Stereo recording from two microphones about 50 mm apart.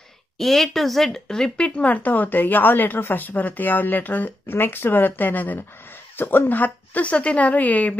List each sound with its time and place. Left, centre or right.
0.4 s speech: centre
1.8 s speech: left